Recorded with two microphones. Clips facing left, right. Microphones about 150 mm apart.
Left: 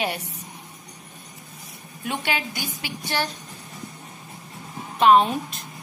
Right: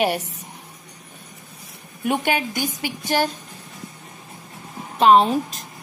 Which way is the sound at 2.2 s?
45° right (ahead or behind).